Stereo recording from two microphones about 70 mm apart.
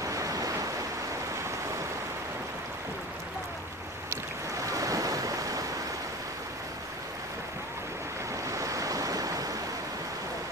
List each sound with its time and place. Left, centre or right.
0.0 s waves: right
4.1 s waves: right
8.5 s waves: right